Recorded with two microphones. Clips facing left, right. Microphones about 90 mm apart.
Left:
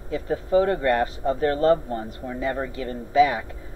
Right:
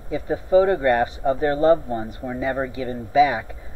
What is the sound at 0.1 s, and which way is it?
Speech, 15° right (ahead or behind).